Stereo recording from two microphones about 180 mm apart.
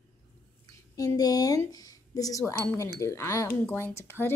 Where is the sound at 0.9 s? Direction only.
20° left (ahead or behind).